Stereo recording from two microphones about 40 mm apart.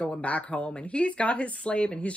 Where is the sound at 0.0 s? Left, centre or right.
Left.